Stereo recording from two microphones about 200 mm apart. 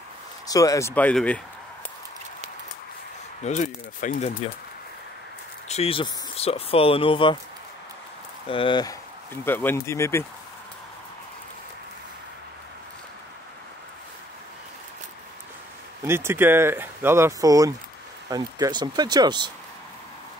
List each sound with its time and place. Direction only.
0.5 s speech: 15° left (ahead or behind)
3.4 s speech: 35° left (ahead or behind)
5.7 s speech: 30° left (ahead or behind)
8.5 s speech: 25° left (ahead or behind)
9.3 s speech: 10° left (ahead or behind)
16.0 s speech: 10° right (ahead or behind)